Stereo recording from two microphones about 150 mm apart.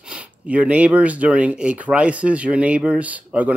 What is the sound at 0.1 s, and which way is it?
Speech, 10° right (ahead or behind).